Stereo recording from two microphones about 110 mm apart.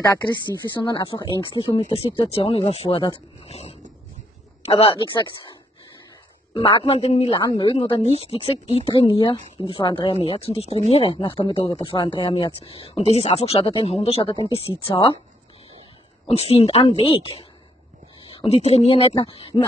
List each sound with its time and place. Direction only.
0.8 s speech: 50° left (ahead or behind)
1.9 s speech: 60° left (ahead or behind)
3.4 s a sound: 75° left (ahead or behind)
4.6 s speech: 60° left (ahead or behind)
6.5 s a man's voice: 60° left (ahead or behind)
7.3 s speech: 50° left (ahead or behind)
8.1 s speech: 60° left (ahead or behind)
11.1 s speech: 50° left (ahead or behind)
16.3 s speech: 65° left (ahead or behind)